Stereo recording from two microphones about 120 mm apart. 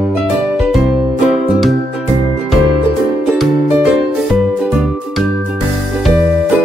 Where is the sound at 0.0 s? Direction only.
5° right (ahead or behind).